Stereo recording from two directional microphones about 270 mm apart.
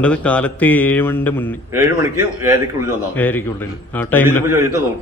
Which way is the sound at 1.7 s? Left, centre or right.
Centre.